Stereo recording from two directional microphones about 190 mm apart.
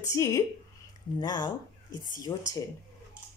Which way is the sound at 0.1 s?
15° left (ahead or behind).